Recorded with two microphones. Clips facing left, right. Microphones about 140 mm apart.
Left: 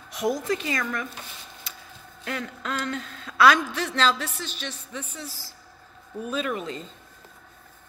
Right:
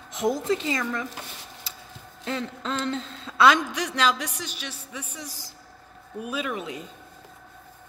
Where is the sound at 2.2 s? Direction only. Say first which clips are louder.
Right 2 dB; 25° right (ahead or behind); by 6.8 s 10° right (ahead or behind).